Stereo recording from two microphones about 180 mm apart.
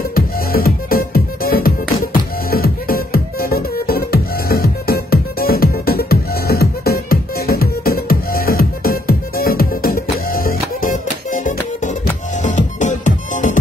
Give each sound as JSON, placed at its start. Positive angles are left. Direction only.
{"t": 0.1, "sound": "music", "side_deg": 55}